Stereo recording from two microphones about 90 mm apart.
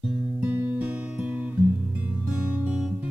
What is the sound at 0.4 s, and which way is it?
Music, 15° right (ahead or behind).